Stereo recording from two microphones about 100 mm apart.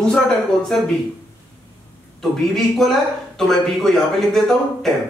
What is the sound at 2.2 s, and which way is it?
Speech, centre (ahead or behind).